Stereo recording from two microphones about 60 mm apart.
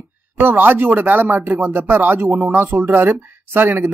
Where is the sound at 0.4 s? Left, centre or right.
Right.